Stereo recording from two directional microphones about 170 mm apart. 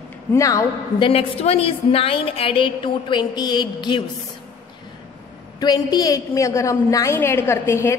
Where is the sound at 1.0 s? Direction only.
35° left (ahead or behind).